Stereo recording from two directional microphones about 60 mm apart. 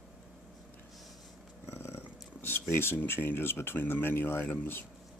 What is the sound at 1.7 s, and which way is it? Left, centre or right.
Speech, left.